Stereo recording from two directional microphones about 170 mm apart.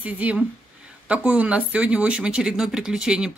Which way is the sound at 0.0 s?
10° right (ahead or behind).